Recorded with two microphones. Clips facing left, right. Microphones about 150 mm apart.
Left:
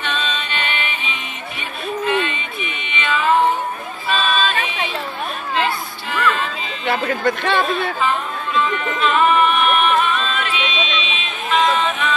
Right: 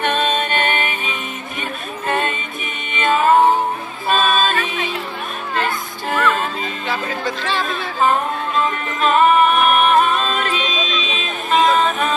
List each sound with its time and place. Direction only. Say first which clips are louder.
0.0 s music: right 6 dB; 50° right (ahead or behind)
6.9 s a sound: left 6 dB; 60° left (ahead or behind)
8.0 s music: right 4 dB; 45° right (ahead or behind)